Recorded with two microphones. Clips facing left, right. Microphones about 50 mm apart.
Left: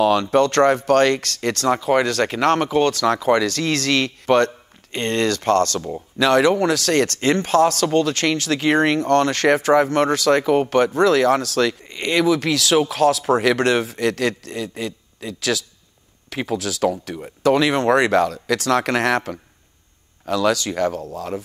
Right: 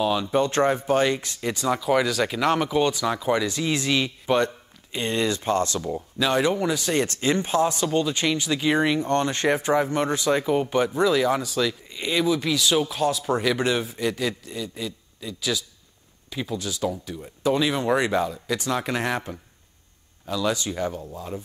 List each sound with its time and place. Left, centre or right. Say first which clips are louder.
0.0 s speech: left 6 dB; left
1.7 s speech: left 4 dB; left
2.0 s speech: left 4 dB; left
4.9 s speech: left 4 dB; left
6.1 s speech: left 7 dB; left
13.3 s speech: left 6 dB; left